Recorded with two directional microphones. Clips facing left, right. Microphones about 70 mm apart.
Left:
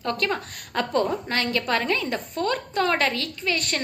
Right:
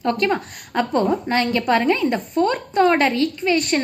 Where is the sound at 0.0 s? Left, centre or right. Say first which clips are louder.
Right 6 dB; centre.